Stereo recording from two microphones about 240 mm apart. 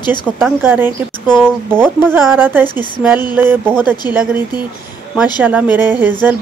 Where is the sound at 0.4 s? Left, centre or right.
Centre.